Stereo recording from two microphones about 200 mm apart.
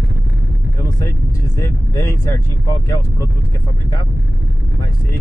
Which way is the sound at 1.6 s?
15° left (ahead or behind).